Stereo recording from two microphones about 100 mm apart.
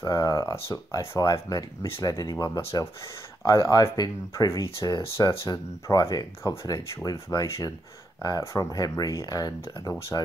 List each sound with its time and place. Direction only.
0.0 s speech: 35° left (ahead or behind)